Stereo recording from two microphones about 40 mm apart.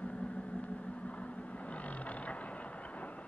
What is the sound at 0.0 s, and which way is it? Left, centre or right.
Vehicle, left.